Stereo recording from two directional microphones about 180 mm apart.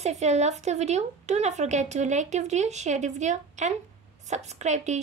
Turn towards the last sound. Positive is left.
turn(degrees=-40)  # may be behind; listen again after turning